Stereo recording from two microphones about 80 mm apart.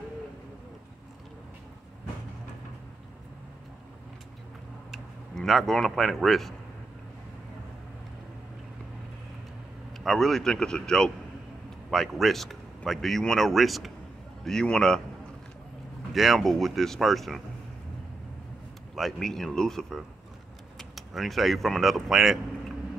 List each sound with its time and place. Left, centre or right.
4.9 s speech: centre
9.9 s a man's voice: centre
16.1 s speech: centre
18.9 s speech: centre